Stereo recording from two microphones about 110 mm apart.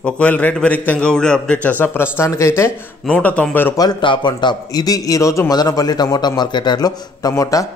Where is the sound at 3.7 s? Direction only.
40° left (ahead or behind).